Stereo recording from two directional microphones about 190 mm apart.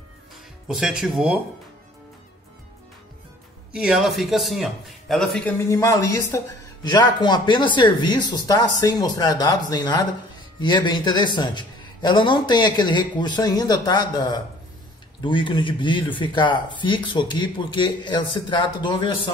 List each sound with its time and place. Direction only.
0.7 s a man's voice: 5° right (ahead or behind)
3.7 s a man's voice: 5° right (ahead or behind)
5.7 s a man's voice: 15° left (ahead or behind)